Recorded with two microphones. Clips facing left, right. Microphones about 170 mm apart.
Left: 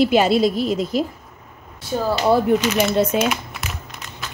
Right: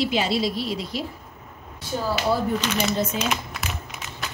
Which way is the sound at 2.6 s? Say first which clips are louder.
Left 5 dB; 5° left (ahead or behind).